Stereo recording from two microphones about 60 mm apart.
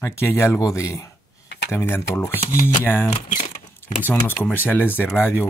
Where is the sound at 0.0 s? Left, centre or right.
Left.